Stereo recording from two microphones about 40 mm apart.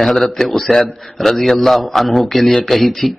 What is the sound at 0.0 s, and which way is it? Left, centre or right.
A man's voice, centre.